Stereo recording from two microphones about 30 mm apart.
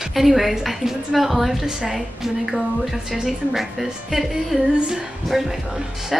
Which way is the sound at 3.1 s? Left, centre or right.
Centre.